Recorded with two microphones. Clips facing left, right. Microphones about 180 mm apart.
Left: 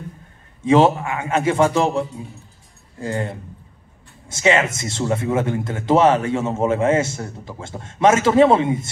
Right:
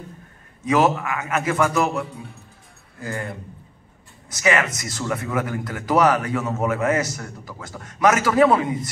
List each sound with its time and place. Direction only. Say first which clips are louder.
0.7 s speech: left 4 dB; 30° left (ahead or behind)